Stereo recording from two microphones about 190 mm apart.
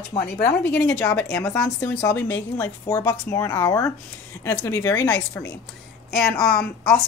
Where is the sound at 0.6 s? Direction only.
5° left (ahead or behind).